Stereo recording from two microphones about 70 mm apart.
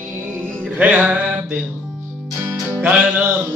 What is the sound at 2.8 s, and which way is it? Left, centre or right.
Music, right.